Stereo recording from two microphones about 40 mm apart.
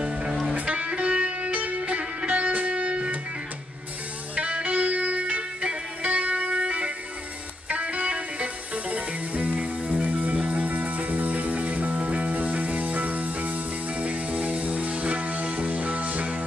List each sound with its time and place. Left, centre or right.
0.3 s music: centre
0.7 s music: right
4.4 s music: right